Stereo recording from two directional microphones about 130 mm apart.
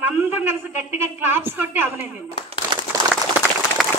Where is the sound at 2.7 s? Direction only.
35° right (ahead or behind).